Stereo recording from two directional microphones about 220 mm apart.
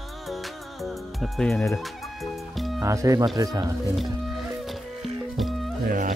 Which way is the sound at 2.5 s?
Centre (ahead or behind).